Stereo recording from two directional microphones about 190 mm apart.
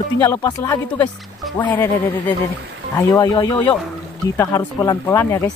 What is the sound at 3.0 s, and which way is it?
Speech, 20° left (ahead or behind).